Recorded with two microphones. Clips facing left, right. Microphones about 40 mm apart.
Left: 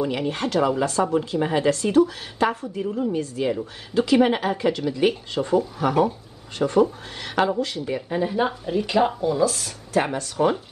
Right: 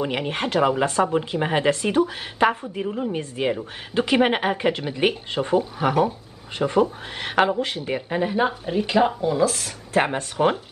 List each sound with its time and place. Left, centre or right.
0.0 s speech: right
8.8 s speech: centre
9.4 s speech: right